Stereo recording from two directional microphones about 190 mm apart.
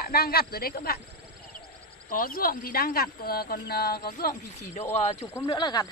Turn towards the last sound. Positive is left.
turn(degrees=20)  # may be behind; listen again after turning